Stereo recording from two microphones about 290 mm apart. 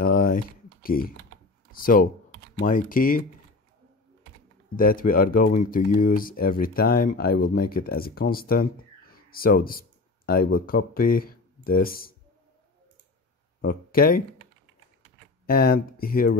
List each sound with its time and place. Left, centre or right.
0.0 s typing: left
0.8 s speech: left
4.7 s speech: left
13.6 s speech: left
15.4 s speech: left